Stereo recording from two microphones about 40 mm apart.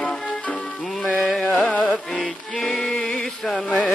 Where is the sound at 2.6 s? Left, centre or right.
Left.